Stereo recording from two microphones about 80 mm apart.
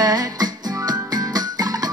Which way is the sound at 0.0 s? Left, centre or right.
Right.